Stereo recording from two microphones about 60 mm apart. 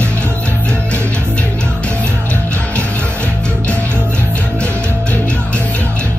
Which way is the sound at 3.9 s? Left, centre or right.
Right.